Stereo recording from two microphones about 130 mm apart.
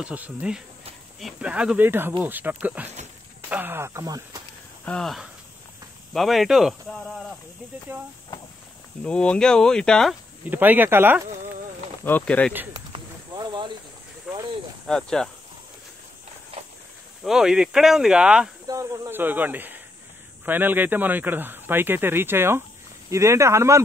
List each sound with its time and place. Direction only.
0.0 s speech: 10° right (ahead or behind); by 4.4 s 30° right (ahead or behind)
4.8 s speech: 5° left (ahead or behind)
7.9 s speech: 15° right (ahead or behind)
9.0 s speech: 10° left (ahead or behind)
10.5 s speech: 15° right (ahead or behind)
12.0 s speech: 15° left (ahead or behind)
12.7 s snake: 35° right (ahead or behind)
14.3 s a sound: 5° right (ahead or behind)
14.9 s speech: 5° left (ahead or behind)
17.2 s speech: 5° right (ahead or behind)
18.7 s speech: 25° right (ahead or behind)